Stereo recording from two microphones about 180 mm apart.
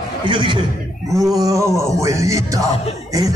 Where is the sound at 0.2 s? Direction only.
25° right (ahead or behind).